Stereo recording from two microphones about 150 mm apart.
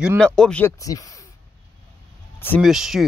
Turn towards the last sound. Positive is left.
turn(degrees=0)  # may be behind; listen again after turning